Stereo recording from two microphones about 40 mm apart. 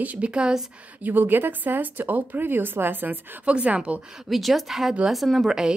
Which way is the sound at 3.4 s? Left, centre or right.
Right.